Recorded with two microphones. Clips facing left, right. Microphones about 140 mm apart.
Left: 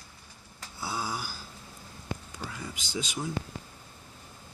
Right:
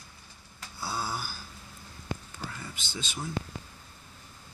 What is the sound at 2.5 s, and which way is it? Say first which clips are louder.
Speech: left 4 dB; 15° left (ahead or behind).